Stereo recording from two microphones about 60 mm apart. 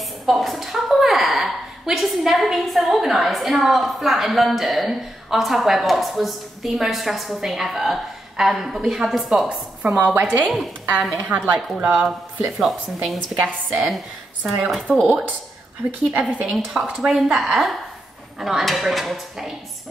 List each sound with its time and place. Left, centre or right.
0.0 s a woman's voice: centre
9.8 s a woman's voice: right
11.3 s speech: right
12.4 s a woman's voice: centre
13.4 s speech: right
13.7 s a woman's voice: centre
16.2 s a woman's voice: centre